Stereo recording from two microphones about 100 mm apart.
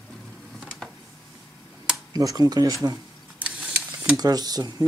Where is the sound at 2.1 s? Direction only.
40° right (ahead or behind).